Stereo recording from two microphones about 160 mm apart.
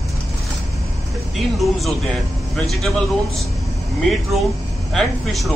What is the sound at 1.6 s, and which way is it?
A man's voice, centre (ahead or behind).